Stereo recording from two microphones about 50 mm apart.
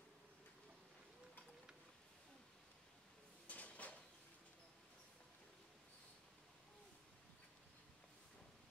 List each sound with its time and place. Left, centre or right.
3.4 s drawer open or close: left